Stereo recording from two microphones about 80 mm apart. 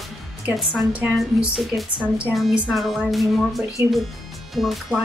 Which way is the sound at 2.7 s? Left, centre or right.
Centre.